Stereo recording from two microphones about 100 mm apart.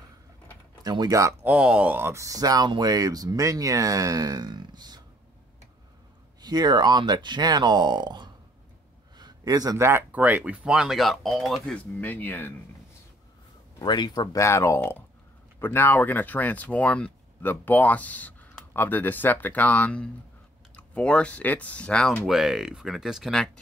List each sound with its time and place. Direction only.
0.8 s speech: 40° right (ahead or behind)
1.4 s speech: 10° right (ahead or behind)
2.2 s speech: 35° right (ahead or behind)
6.4 s speech: 45° right (ahead or behind)
9.2 s a sound: 40° right (ahead or behind)
9.8 s speech: 20° right (ahead or behind); by 11.7 s centre (ahead or behind)
11.7 s speech: 20° left (ahead or behind)
13.7 s speech: 45° left (ahead or behind); by 22.1 s 10° left (ahead or behind)
22.3 s speech: centre (ahead or behind)